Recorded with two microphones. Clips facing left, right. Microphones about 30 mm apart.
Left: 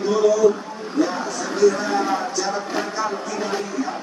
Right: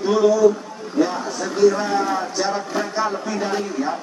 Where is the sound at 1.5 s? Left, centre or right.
Centre.